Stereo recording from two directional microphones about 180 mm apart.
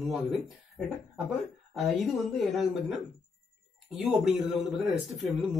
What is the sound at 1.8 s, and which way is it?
Speech, centre (ahead or behind).